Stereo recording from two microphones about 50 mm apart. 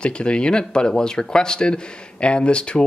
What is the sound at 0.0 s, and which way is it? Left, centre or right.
Speech, centre.